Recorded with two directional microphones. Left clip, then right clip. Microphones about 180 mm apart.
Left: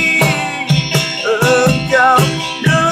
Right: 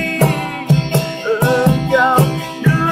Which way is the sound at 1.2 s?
40° left (ahead or behind).